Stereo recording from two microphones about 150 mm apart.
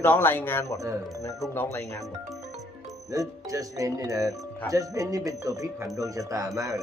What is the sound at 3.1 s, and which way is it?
Speech, 20° right (ahead or behind).